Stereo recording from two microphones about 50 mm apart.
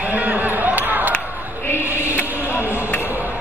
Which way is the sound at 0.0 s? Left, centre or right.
Right.